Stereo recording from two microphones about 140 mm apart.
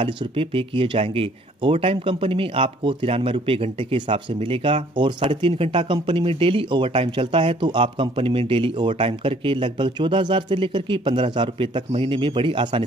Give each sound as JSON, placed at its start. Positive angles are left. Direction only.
{"t": 0.0, "sound": "speech", "side_deg": -40}